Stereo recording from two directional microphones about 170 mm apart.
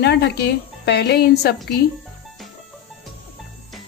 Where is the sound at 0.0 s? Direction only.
80° left.